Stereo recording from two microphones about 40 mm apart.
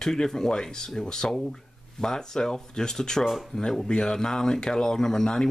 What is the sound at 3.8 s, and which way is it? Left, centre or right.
Speech, centre.